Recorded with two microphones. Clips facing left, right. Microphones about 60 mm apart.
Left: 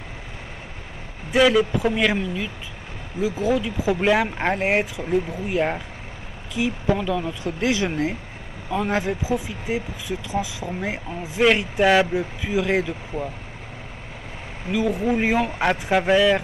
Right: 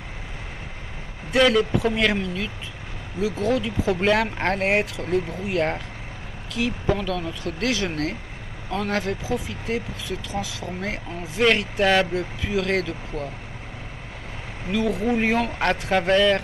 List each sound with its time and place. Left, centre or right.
1.3 s speech: centre
14.7 s speech: centre